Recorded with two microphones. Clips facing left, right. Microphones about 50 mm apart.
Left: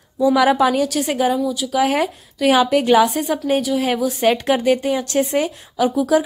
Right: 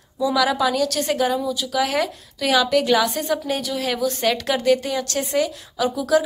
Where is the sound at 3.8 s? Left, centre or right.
Left.